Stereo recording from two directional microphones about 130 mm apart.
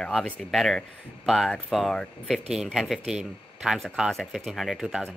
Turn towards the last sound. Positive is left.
turn(degrees=0)  # may be behind; listen again after turning